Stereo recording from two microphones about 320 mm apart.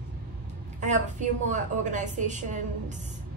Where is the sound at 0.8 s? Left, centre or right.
Right.